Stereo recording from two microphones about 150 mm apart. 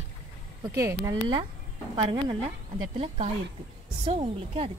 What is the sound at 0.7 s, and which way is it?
Speech, 20° right (ahead or behind).